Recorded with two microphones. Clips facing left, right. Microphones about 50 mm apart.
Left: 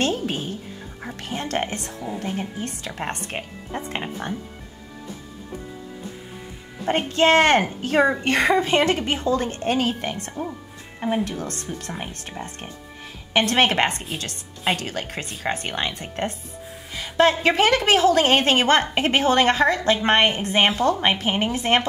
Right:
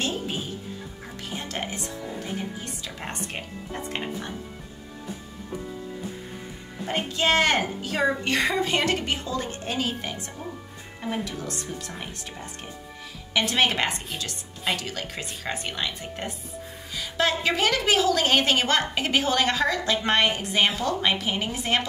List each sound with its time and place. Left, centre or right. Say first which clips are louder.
0.0 s a woman's voice: left 5 dB; left
6.9 s a woman's voice: left 6 dB; left